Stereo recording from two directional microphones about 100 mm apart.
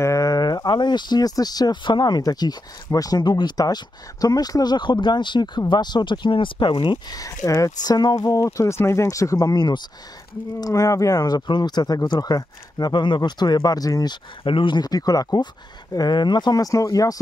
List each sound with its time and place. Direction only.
0.0 s speech: 35° left (ahead or behind); by 6.7 s 55° left (ahead or behind)
6.7 s speech: 40° left (ahead or behind)
14.4 s speech: 60° left (ahead or behind); by 17.2 s 35° left (ahead or behind)